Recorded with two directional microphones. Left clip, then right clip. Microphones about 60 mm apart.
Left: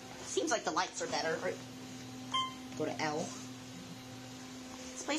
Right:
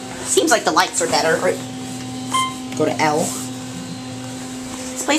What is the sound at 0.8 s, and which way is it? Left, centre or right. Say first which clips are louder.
Speech: right 18 dB; centre.